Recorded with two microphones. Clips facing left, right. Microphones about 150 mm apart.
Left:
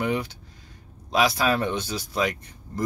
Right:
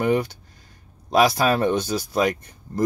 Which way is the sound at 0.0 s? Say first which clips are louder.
Right 5 dB; 45° right (ahead or behind).